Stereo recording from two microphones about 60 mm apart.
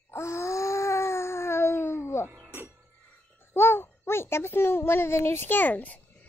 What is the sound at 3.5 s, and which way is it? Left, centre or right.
A child's voice, left.